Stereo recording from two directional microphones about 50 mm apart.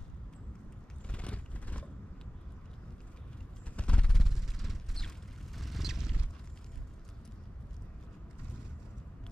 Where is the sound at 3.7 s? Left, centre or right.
Left.